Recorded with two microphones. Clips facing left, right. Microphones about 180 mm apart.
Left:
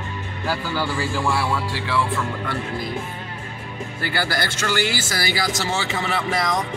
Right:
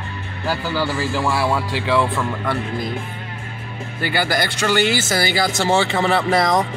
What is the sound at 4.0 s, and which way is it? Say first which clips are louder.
Speech: right 4 dB; 15° right (ahead or behind).